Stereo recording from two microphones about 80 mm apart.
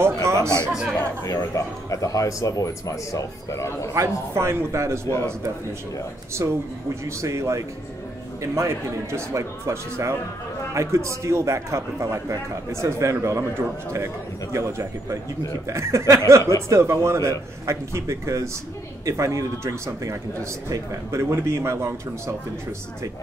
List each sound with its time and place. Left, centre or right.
0.0 s a sound: right
1.2 s speech: left
3.9 s speech: right
6.4 s speech: right